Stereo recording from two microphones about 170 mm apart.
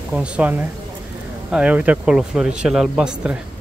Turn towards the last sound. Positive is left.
turn(degrees=-5)  # may be behind; listen again after turning